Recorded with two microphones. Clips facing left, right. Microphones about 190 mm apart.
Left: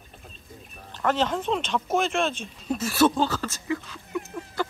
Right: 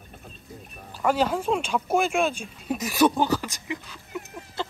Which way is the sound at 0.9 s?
10° right (ahead or behind).